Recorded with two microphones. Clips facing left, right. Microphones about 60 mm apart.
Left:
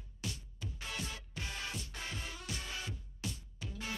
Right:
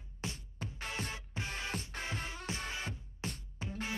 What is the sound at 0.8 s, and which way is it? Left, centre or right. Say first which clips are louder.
Music: right 2 dB; right.